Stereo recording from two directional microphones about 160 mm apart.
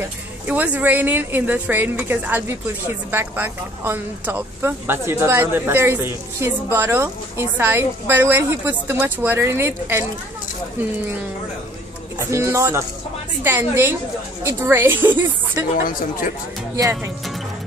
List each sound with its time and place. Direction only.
0.5 s a woman's voice: 10° right (ahead or behind)
12.2 s a woman's voice: 15° right (ahead or behind)
15.7 s a woman's voice: 60° left (ahead or behind)